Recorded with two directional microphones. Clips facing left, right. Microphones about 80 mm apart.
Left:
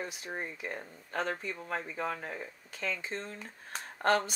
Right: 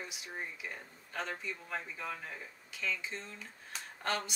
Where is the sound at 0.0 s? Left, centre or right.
Left.